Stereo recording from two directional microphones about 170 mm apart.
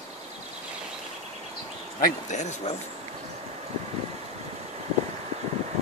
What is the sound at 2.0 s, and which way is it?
Speech, 45° left (ahead or behind).